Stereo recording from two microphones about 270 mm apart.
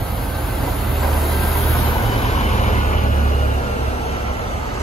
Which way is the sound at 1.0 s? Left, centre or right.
Centre.